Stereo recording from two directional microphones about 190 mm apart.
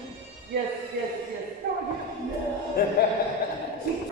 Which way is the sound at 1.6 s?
55° right (ahead or behind).